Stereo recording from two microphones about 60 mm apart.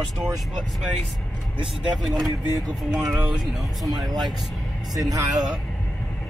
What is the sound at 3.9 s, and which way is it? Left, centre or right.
Speech, centre.